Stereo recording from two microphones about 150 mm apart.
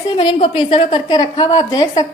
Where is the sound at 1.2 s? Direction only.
25° left (ahead or behind).